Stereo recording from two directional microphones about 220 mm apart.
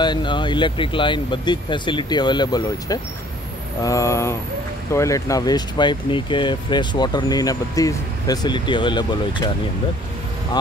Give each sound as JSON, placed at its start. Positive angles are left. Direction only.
{"t": 0.0, "sound": "speech", "side_deg": 20}